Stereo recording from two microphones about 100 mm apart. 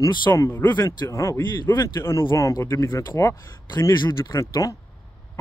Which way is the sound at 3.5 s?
40° left (ahead or behind).